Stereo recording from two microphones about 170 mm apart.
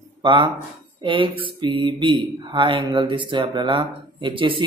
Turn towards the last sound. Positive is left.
turn(degrees=-30)  # may be behind; listen again after turning